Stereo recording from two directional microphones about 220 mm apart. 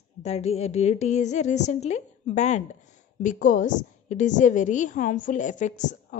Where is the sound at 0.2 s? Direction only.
30° left (ahead or behind).